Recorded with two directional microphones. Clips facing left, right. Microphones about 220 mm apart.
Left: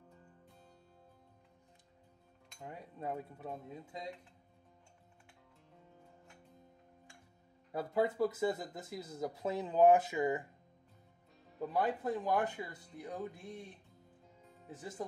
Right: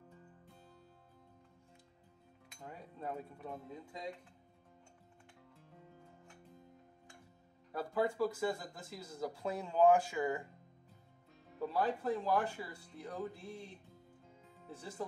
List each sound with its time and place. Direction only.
2.6 s cutlery: 20° left (ahead or behind)
7.7 s cutlery: 20° left (ahead or behind)
11.6 s speech: 15° left (ahead or behind)
14.7 s speech: 15° left (ahead or behind)